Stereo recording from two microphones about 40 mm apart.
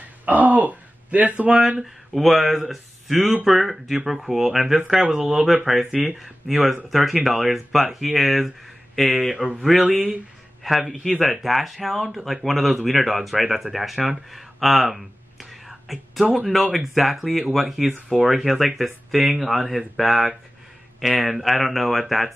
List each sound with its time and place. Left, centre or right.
0.2 s a sound: right
1.6 s speech: centre
19.1 s speech: centre
19.4 s speech: centre